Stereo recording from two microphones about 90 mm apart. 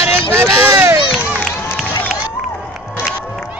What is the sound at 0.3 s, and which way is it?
Vehicle, 25° right (ahead or behind).